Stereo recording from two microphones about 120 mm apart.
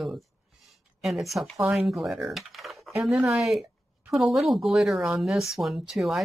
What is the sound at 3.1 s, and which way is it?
Speech, 20° right (ahead or behind).